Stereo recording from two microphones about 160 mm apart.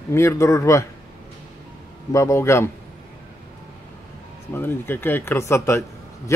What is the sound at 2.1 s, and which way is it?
Speech, 20° left (ahead or behind).